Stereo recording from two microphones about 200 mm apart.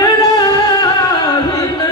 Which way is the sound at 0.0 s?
15° left (ahead or behind).